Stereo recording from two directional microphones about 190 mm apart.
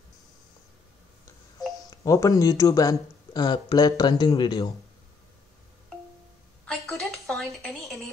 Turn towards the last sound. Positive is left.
turn(degrees=5)  # may be behind; listen again after turning